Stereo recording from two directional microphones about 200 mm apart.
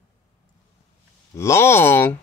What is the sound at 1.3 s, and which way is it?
Speech, 15° left (ahead or behind).